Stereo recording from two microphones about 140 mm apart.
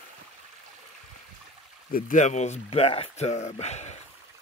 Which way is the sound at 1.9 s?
60° left (ahead or behind).